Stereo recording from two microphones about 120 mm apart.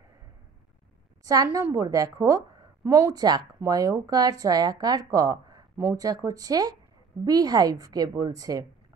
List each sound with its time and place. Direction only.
1.2 s a woman's voice: 30° right (ahead or behind)